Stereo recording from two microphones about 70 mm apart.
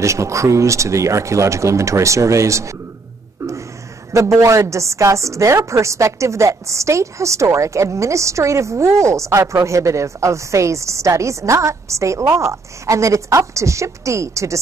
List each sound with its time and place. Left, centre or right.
0.0 s a woman's voice: right
4.1 s a woman's voice: right